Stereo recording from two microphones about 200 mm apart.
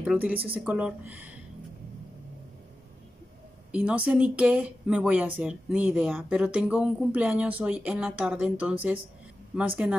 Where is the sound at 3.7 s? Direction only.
5° right (ahead or behind).